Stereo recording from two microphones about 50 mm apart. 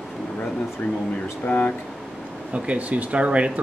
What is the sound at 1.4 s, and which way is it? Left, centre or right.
Speech, left.